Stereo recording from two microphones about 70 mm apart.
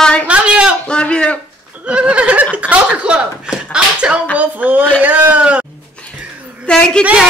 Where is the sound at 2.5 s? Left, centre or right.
Right.